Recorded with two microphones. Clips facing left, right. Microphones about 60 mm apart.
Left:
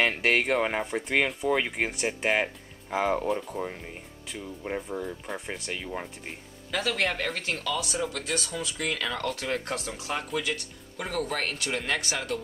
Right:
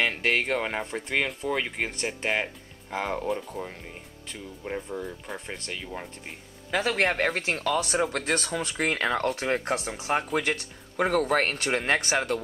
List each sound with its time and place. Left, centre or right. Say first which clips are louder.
0.0 s speech: left 1 dB; centre
6.7 s speech: right 3 dB; right
10.3 s speech: right 3 dB; right